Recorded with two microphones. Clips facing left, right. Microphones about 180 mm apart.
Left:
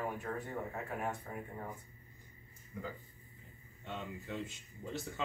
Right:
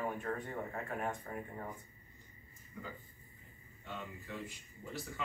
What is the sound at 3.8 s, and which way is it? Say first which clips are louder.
Speech: left 3 dB; 25° left (ahead or behind).